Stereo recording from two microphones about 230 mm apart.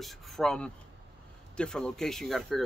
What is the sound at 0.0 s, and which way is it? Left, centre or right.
Speech, centre.